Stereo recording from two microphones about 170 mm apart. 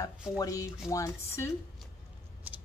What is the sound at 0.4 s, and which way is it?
Speech, 20° left (ahead or behind).